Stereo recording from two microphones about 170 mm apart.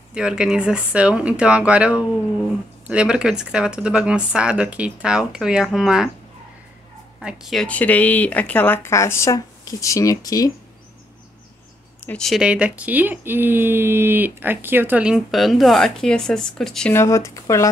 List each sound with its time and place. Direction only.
0.1 s speech: 5° right (ahead or behind)
7.2 s speech: centre (ahead or behind); by 10.5 s 20° left (ahead or behind)
12.0 s speech: 5° left (ahead or behind)
16.9 s speech: 15° left (ahead or behind)